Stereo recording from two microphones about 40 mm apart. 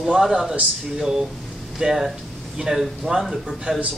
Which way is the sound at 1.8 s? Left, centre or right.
Centre.